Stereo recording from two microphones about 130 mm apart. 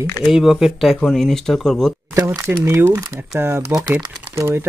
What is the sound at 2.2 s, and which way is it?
Speech, 20° right (ahead or behind).